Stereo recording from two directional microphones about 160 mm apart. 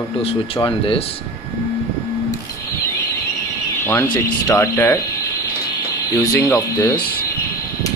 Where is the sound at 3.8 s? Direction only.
15° left (ahead or behind).